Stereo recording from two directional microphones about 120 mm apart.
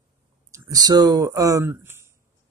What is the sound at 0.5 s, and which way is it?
Speech, 30° right (ahead or behind).